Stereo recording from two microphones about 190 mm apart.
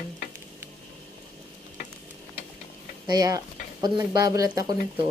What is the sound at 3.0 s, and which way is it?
Speech, 20° right (ahead or behind).